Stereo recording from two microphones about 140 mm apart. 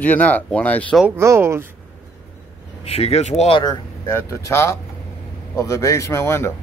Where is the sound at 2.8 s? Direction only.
50° left (ahead or behind).